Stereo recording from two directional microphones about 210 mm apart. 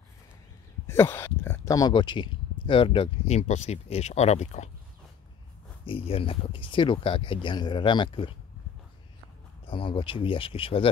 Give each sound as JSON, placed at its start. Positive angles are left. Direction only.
{"t": 0.8, "sound": "speech", "side_deg": 10}
{"t": 5.9, "sound": "speech", "side_deg": 25}
{"t": 9.7, "sound": "speech", "side_deg": 25}